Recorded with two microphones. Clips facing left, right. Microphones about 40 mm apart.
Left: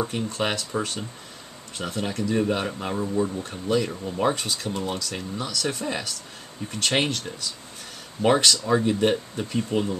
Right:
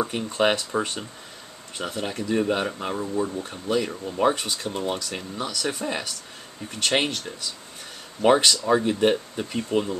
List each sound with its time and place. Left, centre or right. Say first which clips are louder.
0.0 s speech: right 3 dB; centre